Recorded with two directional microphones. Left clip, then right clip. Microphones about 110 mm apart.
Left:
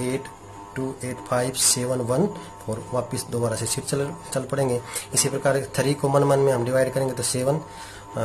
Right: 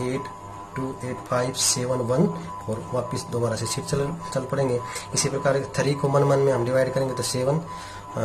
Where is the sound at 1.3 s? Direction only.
10° left (ahead or behind).